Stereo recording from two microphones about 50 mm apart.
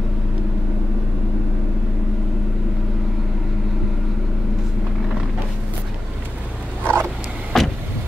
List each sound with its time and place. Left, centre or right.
6.8 s vehicle: right
7.5 s vehicle: centre